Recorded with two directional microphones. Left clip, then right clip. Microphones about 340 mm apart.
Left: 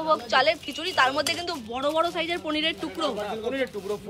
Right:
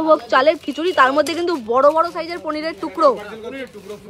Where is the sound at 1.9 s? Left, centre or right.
Centre.